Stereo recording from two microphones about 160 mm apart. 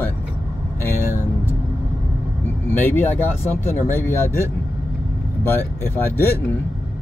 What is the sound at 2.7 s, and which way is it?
Speech, 15° left (ahead or behind).